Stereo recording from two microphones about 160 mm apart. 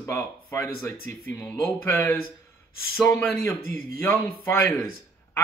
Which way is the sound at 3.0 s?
10° left (ahead or behind).